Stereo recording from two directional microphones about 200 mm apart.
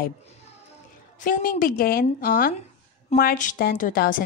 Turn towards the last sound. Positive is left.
turn(degrees=45)  # may be behind; listen again after turning